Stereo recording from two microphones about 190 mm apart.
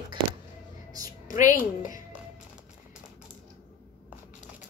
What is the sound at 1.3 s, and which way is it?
Speech, 45° left (ahead or behind).